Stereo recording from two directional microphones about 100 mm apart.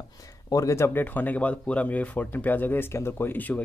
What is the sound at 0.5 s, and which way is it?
Speech, 30° left (ahead or behind).